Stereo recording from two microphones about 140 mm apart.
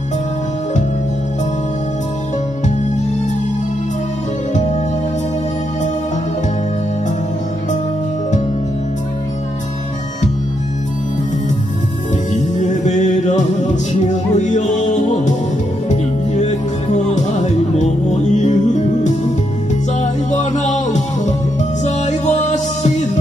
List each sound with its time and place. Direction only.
12.4 s music: 60° left (ahead or behind)